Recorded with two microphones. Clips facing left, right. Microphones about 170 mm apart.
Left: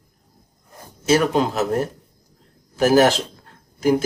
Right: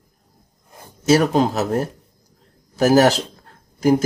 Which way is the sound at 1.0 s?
40° right (ahead or behind).